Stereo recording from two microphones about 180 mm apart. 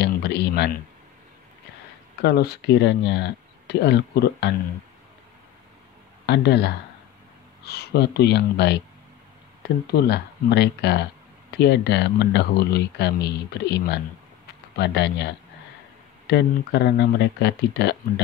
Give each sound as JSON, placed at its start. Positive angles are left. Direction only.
{"t": 0.0, "sound": "a sound", "side_deg": 70}
{"t": 2.2, "sound": "speech", "side_deg": 65}
{"t": 6.2, "sound": "speech", "side_deg": 70}
{"t": 9.9, "sound": "speech", "side_deg": 70}
{"t": 16.3, "sound": "speech", "side_deg": 65}